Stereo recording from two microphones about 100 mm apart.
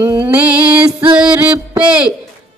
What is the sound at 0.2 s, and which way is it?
Music, 15° right (ahead or behind).